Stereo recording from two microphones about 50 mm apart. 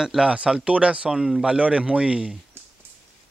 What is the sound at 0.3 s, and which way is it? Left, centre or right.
Speech, right.